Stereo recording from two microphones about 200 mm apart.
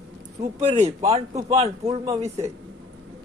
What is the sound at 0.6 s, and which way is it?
Speech, 35° right (ahead or behind).